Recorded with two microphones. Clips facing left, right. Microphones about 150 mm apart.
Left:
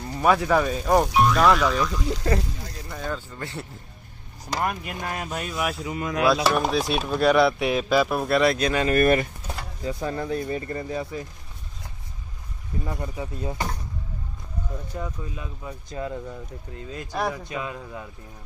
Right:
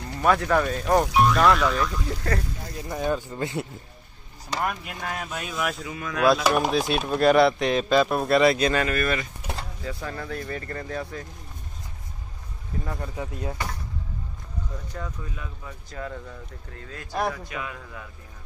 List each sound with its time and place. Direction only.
0.2 s speech: 10° left (ahead or behind)
2.9 s speech: 15° right (ahead or behind)
4.5 s speech: 5° left (ahead or behind)
5.9 s speech: 25° left (ahead or behind)
6.2 s speech: centre (ahead or behind)
8.9 s speech: 50° left (ahead or behind)
9.8 s speech: 20° left (ahead or behind)
12.8 s speech: 15° left (ahead or behind)
14.9 s speech: 15° left (ahead or behind)